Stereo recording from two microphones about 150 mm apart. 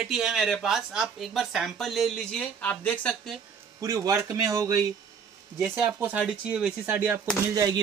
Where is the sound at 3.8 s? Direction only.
20° right (ahead or behind).